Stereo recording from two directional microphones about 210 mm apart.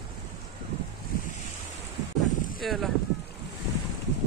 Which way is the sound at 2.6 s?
Centre (ahead or behind).